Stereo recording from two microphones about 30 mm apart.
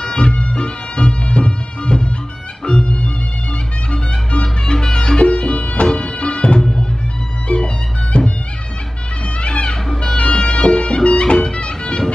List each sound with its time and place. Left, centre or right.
0.0 s music: left
9.4 s music: left